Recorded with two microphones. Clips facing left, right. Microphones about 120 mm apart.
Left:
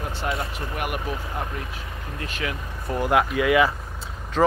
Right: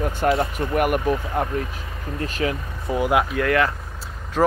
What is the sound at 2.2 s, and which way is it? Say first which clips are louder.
Speech: right 6 dB; 40° right (ahead or behind).